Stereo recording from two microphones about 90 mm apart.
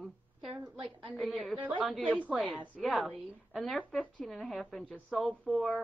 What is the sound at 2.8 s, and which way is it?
A woman's voice, centre (ahead or behind).